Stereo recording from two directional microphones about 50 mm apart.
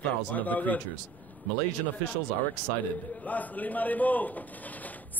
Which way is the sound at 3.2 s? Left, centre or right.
Left.